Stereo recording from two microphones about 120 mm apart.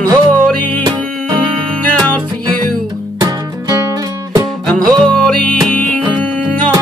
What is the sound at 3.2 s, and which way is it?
Music, 30° right (ahead or behind).